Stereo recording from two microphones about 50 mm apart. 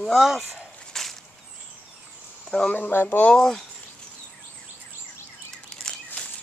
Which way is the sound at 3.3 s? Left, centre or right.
Centre.